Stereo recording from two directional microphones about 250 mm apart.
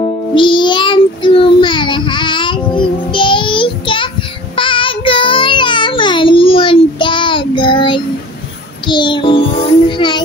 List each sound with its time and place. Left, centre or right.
0.0 s music: centre
4.6 s child singing: centre
8.8 s music: centre